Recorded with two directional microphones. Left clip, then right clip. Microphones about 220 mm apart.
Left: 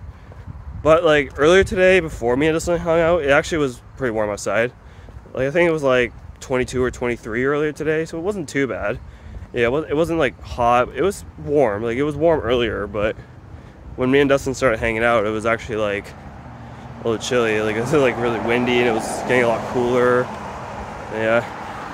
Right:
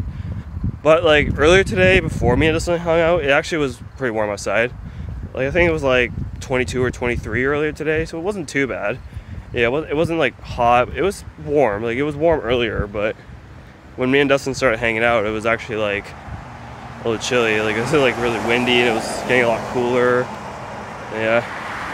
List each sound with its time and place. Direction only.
0.8 s speech: 5° right (ahead or behind)
18.9 s speech: 35° right (ahead or behind)
19.2 s speech: centre (ahead or behind)
19.6 s speech: 20° right (ahead or behind)
19.9 s speech: 5° left (ahead or behind)
20.2 s vehicle: 10° right (ahead or behind)